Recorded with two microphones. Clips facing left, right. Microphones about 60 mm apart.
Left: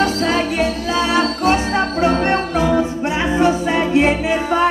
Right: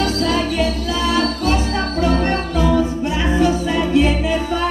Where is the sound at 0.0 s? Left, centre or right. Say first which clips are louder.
Left 1 dB; left.